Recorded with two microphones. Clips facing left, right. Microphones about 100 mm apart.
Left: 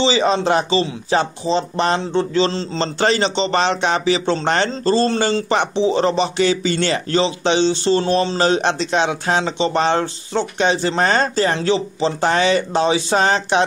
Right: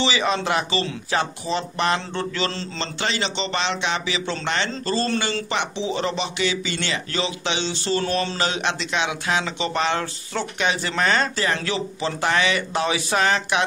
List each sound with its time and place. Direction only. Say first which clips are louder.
0.0 s speech: left 6 dB; 30° left (ahead or behind)
3.0 s a man's voice: left 8 dB; 40° left (ahead or behind)